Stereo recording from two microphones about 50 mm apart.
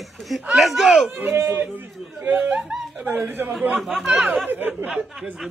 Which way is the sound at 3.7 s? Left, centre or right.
Centre.